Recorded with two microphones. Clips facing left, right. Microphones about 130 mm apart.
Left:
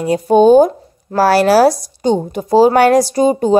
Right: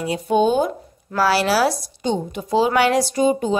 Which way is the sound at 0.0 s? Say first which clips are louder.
Left 8 dB; 40° left (ahead or behind).